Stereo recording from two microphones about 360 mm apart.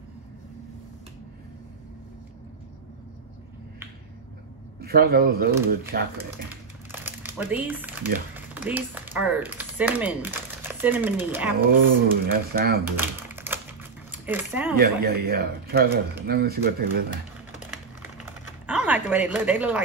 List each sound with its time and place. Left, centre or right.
4.7 s a man's voice: right
6.9 s speech: centre
12.1 s speech: right
12.8 s typing: centre
14.1 s speech: centre
14.8 s speech: right
17.1 s typing: centre
18.7 s speech: centre